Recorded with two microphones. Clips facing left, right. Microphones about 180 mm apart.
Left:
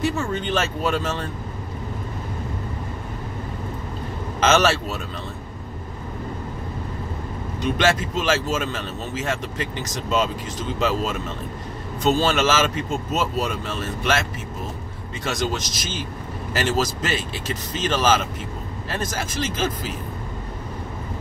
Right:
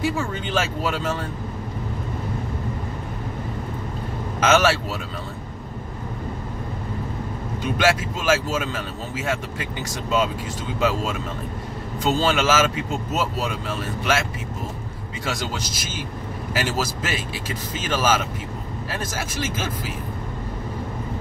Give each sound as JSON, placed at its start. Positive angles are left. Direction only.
{"t": 0.0, "sound": "speech", "side_deg": -10}
{"t": 4.4, "sound": "speech", "side_deg": -10}
{"t": 7.6, "sound": "speech", "side_deg": -10}
{"t": 12.0, "sound": "speech", "side_deg": -10}
{"t": 15.2, "sound": "speech", "side_deg": -10}